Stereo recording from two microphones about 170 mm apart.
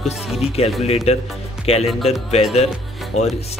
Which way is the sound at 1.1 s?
40° left (ahead or behind).